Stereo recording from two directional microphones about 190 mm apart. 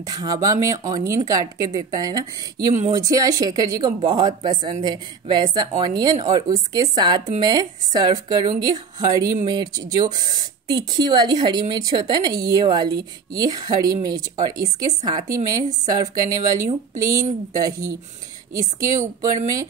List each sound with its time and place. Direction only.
0.0 s a woman's voice: 20° right (ahead or behind)